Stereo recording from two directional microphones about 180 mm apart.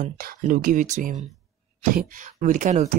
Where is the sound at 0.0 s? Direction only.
50° right (ahead or behind).